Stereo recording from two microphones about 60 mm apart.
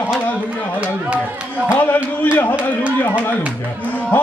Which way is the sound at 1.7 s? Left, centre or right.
Left.